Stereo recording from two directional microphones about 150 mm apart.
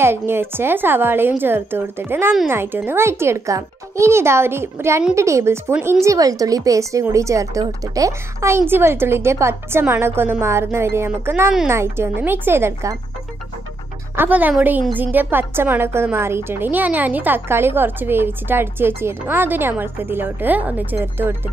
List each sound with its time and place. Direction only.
0.0 s speech: 15° right (ahead or behind)
14.1 s speech: 10° right (ahead or behind)